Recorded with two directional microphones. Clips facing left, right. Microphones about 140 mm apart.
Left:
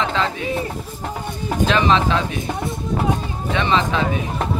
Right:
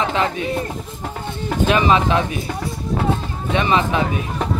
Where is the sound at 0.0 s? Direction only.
15° right (ahead or behind).